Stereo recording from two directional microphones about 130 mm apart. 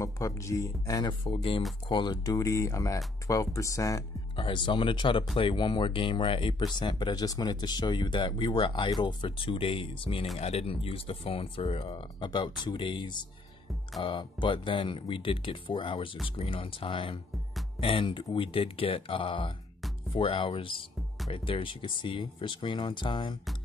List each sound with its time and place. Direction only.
0.0 s speech: 25° left (ahead or behind)
1.2 s speech: 45° left (ahead or behind); by 4.0 s 25° left (ahead or behind)
4.4 s speech: 35° left (ahead or behind)